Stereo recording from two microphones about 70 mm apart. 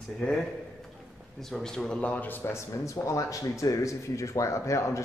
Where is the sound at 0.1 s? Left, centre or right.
Centre.